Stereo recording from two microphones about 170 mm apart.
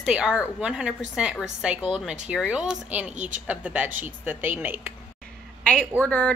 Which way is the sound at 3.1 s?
50° right (ahead or behind).